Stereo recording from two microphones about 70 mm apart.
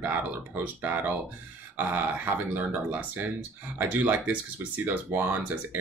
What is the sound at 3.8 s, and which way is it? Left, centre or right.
Speech, right.